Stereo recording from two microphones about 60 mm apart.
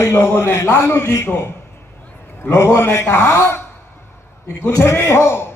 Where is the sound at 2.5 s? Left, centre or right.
Left.